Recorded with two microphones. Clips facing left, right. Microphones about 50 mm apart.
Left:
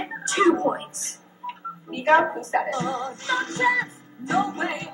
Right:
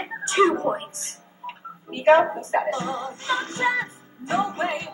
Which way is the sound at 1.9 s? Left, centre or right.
Right.